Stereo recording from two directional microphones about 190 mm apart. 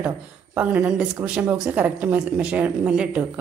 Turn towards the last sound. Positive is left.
turn(degrees=-5)  # may be behind; listen again after turning